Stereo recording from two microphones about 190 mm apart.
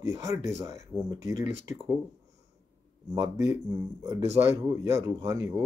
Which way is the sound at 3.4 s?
15° right (ahead or behind).